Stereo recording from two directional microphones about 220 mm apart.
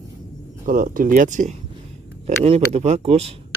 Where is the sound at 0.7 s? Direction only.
40° right (ahead or behind).